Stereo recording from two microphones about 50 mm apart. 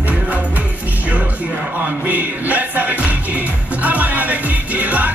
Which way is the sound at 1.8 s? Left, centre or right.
Right.